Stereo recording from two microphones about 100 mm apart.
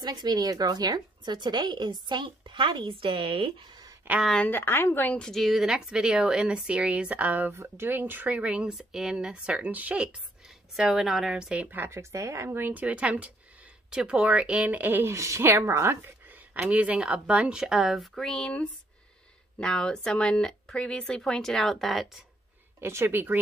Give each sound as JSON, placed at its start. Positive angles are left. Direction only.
{"t": 0.0, "sound": "a woman's voice", "side_deg": -45}
{"t": 4.1, "sound": "speech", "side_deg": -15}
{"t": 4.5, "sound": "a woman's voice", "side_deg": 20}
{"t": 5.2, "sound": "speech", "side_deg": 0}
{"t": 22.8, "sound": "speech", "side_deg": -25}